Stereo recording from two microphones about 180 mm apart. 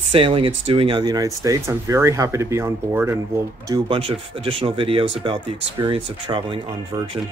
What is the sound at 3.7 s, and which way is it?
Speech, 30° right (ahead or behind).